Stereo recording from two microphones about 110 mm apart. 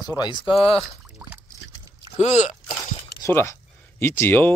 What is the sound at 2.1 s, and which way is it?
Speech, 90° left.